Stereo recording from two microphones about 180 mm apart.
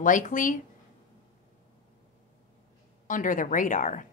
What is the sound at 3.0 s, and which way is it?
Speech, 45° left (ahead or behind).